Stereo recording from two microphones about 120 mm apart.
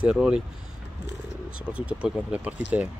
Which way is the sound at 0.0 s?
5° right (ahead or behind).